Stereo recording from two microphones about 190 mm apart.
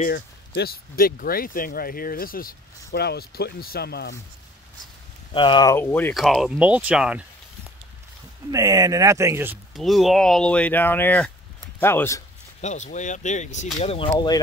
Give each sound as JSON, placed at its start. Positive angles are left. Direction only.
{"t": 0.0, "sound": "speech", "side_deg": 55}
{"t": 5.3, "sound": "speech", "side_deg": 25}
{"t": 6.1, "sound": "speech", "side_deg": 0}
{"t": 8.5, "sound": "speech", "side_deg": -15}
{"t": 9.8, "sound": "speech", "side_deg": 0}
{"t": 12.6, "sound": "speech", "side_deg": 40}
{"t": 14.1, "sound": "speech", "side_deg": 20}